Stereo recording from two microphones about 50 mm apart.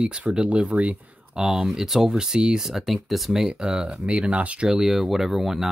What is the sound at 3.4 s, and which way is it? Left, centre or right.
Speech, centre.